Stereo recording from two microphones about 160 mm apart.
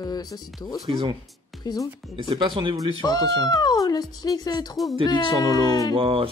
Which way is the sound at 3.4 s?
25° left (ahead or behind).